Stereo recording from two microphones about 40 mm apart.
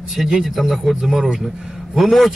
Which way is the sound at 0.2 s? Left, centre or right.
Centre.